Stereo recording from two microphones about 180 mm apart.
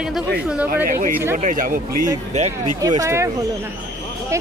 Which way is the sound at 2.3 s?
40° right (ahead or behind).